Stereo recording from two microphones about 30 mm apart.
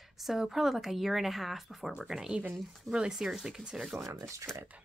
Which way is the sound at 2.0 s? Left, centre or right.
Centre.